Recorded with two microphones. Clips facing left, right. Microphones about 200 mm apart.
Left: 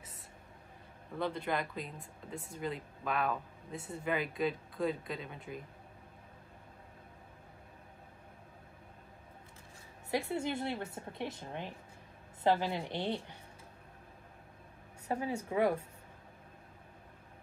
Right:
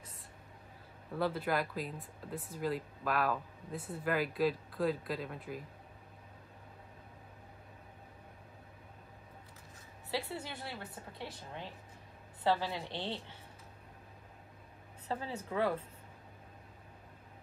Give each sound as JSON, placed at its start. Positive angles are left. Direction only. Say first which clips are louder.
{"t": 1.1, "sound": "speech", "louder": "right 2 dB", "side_deg": -5}
{"t": 10.1, "sound": "a woman's voice", "louder": "left 5 dB", "side_deg": 25}
{"t": 15.0, "sound": "a woman's voice", "louder": "left 4 dB", "side_deg": 15}